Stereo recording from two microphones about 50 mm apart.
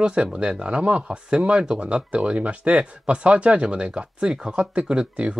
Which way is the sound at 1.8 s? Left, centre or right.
Right.